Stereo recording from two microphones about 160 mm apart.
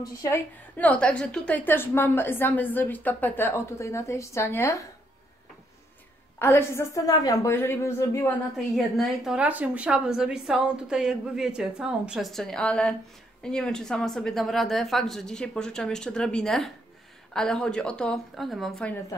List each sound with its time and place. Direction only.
0.0 s a woman's voice: 20° left (ahead or behind)
6.4 s a woman's voice: 15° left (ahead or behind)
8.7 s a woman's voice: centre (ahead or behind)